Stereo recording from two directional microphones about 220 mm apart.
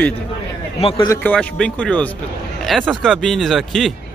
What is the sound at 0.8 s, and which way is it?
Speech, 25° left (ahead or behind).